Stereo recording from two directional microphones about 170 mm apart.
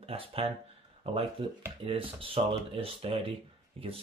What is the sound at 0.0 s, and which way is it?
Speech, 35° right (ahead or behind).